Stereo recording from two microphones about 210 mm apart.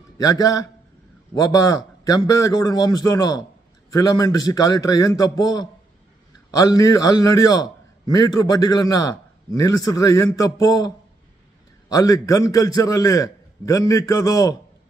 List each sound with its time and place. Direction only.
0.2 s a man's voice: 15° left (ahead or behind)
11.9 s a man's voice: 15° left (ahead or behind)